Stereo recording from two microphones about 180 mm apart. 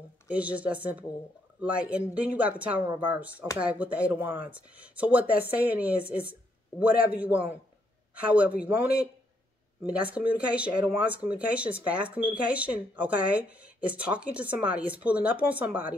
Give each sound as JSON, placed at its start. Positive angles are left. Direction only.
{"t": 0.3, "sound": "speech", "side_deg": -10}
{"t": 9.8, "sound": "speech", "side_deg": -10}